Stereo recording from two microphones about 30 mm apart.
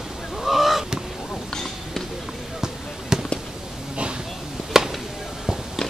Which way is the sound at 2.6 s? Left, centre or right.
Right.